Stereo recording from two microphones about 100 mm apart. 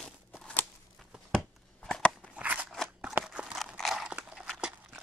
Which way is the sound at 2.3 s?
15° right (ahead or behind).